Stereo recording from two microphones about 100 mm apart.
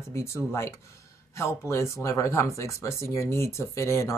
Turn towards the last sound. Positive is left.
turn(degrees=25)  # may be behind; listen again after turning